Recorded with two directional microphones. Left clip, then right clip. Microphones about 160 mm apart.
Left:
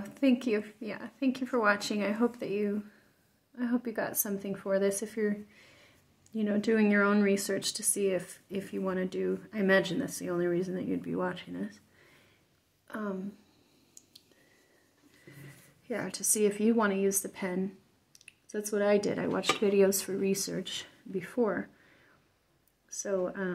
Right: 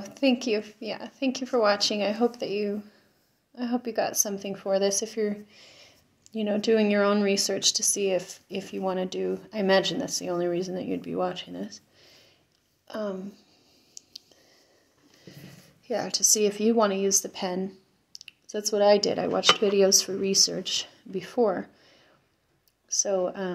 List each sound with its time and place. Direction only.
0.0 s speech: 25° left (ahead or behind)
12.8 s a sound: 30° left (ahead or behind)
15.9 s speech: 25° left (ahead or behind)
23.0 s speech: 20° left (ahead or behind)